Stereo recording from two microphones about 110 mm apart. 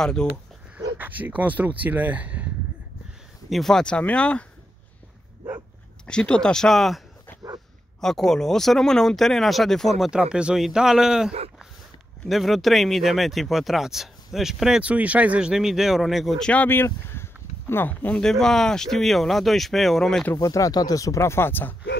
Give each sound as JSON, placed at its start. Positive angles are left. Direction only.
{"t": 0.0, "sound": "speech", "side_deg": 5}
{"t": 0.9, "sound": "speech", "side_deg": -15}
{"t": 3.4, "sound": "speech", "side_deg": 0}
{"t": 6.0, "sound": "speech", "side_deg": 10}
{"t": 8.0, "sound": "speech", "side_deg": 5}
{"t": 16.6, "sound": "speech", "side_deg": 20}
{"t": 20.3, "sound": "speech", "side_deg": 30}